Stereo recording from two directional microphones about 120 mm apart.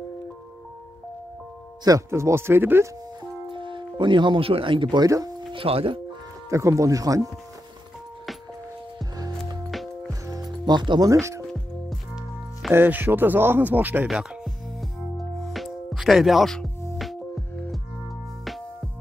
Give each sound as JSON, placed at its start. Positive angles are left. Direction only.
{"t": 1.9, "sound": "speech", "side_deg": -25}
{"t": 3.5, "sound": "speech", "side_deg": -45}
{"t": 5.5, "sound": "speech", "side_deg": -50}
{"t": 6.5, "sound": "speech", "side_deg": -25}
{"t": 9.2, "sound": "music", "side_deg": -30}
{"t": 11.1, "sound": "speech", "side_deg": -25}
{"t": 12.7, "sound": "speech", "side_deg": -15}
{"t": 14.0, "sound": "music", "side_deg": 0}